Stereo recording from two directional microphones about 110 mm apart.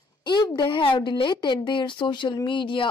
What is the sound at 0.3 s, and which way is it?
A woman's voice, 40° left (ahead or behind).